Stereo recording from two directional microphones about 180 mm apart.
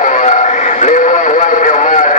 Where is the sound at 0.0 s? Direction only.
40° left (ahead or behind).